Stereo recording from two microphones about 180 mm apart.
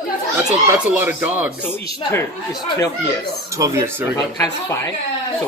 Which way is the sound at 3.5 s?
15° right (ahead or behind).